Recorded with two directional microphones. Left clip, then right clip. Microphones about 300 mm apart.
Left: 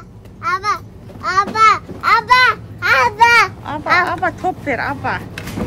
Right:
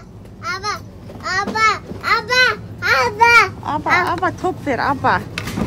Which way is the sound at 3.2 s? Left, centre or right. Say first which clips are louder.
Even; left.